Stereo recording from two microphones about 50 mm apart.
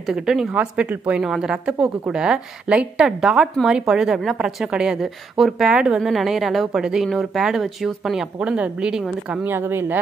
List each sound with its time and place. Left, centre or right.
0.0 s speech: centre
0.7 s a woman's voice: right
1.2 s a woman's voice: centre
3.1 s a woman's voice: centre
4.6 s a woman's voice: centre
6.8 s speech: centre
7.1 s a woman's voice: centre
8.4 s a woman's voice: right
9.4 s speech: right